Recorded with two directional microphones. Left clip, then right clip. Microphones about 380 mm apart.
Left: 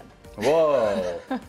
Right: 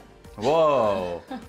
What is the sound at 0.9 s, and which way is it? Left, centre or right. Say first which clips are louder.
Speech: left 1 dB; left.